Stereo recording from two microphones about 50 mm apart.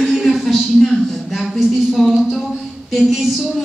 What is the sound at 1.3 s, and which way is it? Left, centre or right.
A woman's voice, centre.